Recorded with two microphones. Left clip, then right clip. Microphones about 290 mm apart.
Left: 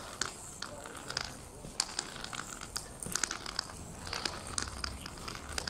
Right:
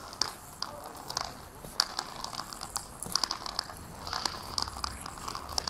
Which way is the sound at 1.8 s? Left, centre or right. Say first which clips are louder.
Right 6 dB; right.